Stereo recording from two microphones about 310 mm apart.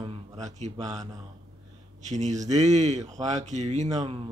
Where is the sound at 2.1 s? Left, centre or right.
Right.